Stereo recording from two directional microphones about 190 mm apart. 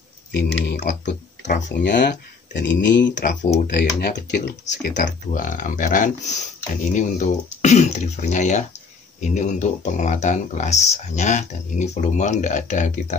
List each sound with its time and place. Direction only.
0.3 s speech: 65° left (ahead or behind)
0.8 s speech: 40° left (ahead or behind)
1.7 s speech: 65° left (ahead or behind)
3.6 s speech: 60° left (ahead or behind)
4.9 s speech: 45° left (ahead or behind)